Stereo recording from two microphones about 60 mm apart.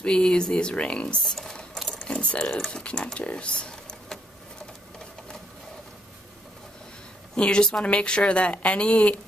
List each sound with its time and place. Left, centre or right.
0.0 s speech: centre
3.2 s a sound: centre
7.3 s a woman's voice: centre